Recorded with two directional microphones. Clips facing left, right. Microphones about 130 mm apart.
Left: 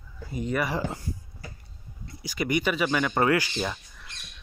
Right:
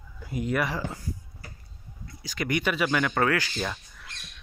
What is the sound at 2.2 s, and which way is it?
Speech, 5° left (ahead or behind).